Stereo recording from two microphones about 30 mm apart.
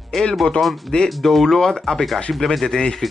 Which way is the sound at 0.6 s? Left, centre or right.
Left.